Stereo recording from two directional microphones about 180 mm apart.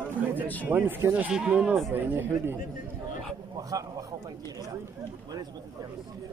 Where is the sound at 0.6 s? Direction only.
10° right (ahead or behind).